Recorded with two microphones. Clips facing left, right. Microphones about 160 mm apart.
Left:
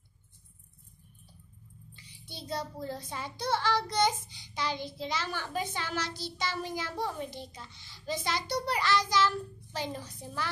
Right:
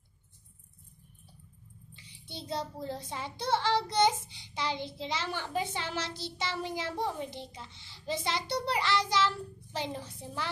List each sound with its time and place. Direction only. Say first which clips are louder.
2.2 s child singing: even; 25° right (ahead or behind)